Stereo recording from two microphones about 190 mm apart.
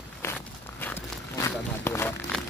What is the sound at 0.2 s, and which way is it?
Walk, 10° left (ahead or behind).